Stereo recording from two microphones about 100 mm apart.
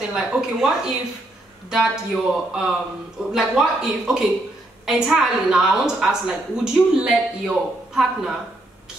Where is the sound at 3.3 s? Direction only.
5° right (ahead or behind).